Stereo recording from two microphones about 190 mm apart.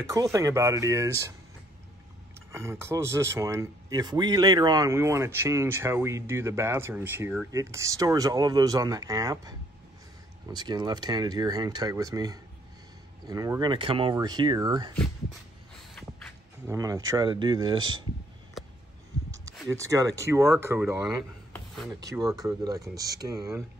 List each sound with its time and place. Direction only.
0.1 s speech: 20° right (ahead or behind)
2.5 s speech: 15° right (ahead or behind)
15.9 s a sound: 5° left (ahead or behind)
16.6 s speech: 15° right (ahead or behind)
19.7 s speech: 15° right (ahead or behind)